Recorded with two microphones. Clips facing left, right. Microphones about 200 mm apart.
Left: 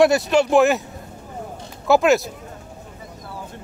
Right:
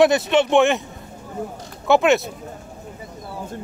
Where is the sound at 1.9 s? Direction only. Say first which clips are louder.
Even; centre (ahead or behind).